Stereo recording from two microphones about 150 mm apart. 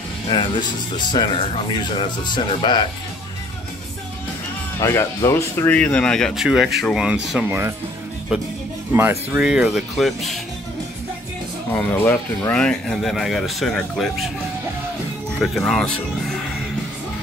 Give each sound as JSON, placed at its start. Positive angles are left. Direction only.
{"t": 0.3, "sound": "speech", "side_deg": 30}
{"t": 4.7, "sound": "speech", "side_deg": 20}
{"t": 8.9, "sound": "speech", "side_deg": -15}
{"t": 11.7, "sound": "speech", "side_deg": 15}
{"t": 15.3, "sound": "speech", "side_deg": 0}